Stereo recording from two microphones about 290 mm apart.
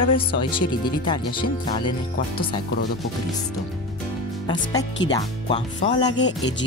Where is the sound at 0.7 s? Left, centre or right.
Centre.